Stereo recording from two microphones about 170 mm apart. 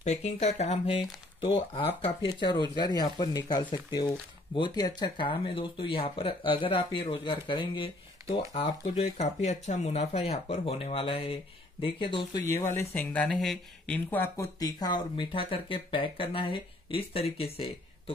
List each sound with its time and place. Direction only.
0.0 s speech: 40° left (ahead or behind)
12.4 s speech: 15° left (ahead or behind); by 18.1 s 35° left (ahead or behind)